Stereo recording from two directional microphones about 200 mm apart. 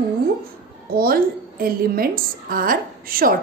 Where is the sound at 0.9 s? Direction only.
45° right (ahead or behind).